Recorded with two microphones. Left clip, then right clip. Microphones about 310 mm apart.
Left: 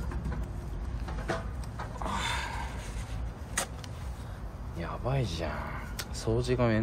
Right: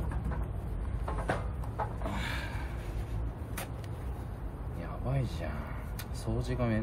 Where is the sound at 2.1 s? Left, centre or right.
Left.